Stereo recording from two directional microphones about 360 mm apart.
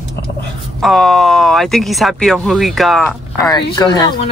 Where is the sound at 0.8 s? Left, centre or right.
Centre.